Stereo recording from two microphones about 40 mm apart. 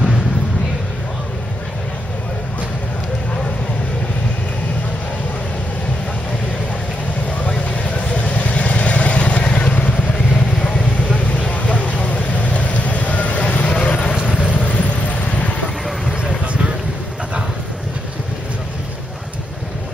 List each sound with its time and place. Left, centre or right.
7.7 s vehicle: left
10.3 s vehicle: centre
11.1 s vehicle: left
14.4 s vehicle: right
14.7 s a sound: left